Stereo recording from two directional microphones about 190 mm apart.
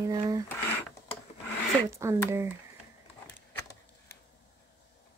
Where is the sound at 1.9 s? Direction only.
15° right (ahead or behind).